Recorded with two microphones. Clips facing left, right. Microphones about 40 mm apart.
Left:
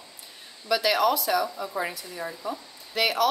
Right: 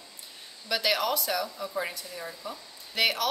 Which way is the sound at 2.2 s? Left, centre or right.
Centre.